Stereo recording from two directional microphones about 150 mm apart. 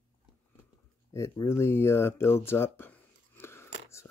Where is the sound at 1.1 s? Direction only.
20° left (ahead or behind).